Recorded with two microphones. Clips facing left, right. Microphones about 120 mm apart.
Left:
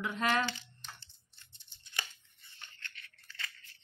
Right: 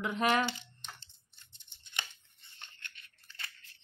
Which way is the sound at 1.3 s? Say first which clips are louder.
Even; 20° right (ahead or behind).